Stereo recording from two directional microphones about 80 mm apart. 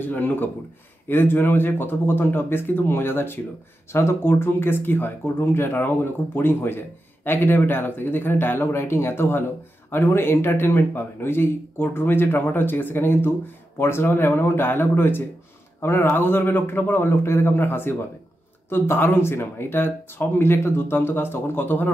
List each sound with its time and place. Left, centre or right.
0.0 s speech: left